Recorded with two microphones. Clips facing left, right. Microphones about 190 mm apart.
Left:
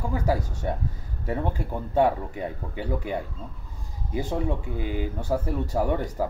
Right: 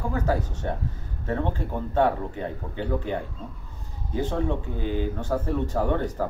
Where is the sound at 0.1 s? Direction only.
10° left (ahead or behind).